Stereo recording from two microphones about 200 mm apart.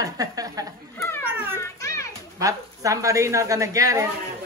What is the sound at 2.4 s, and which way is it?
Speech, 15° right (ahead or behind).